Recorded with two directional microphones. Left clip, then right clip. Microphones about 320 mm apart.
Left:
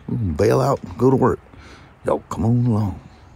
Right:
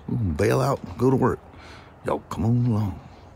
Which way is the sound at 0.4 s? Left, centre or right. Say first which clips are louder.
Left 5 dB; centre.